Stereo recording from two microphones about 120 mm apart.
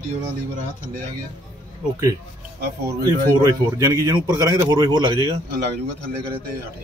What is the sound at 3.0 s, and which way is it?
Speech, 30° right (ahead or behind).